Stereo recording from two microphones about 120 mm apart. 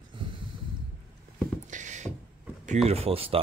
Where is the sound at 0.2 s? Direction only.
45° right (ahead or behind).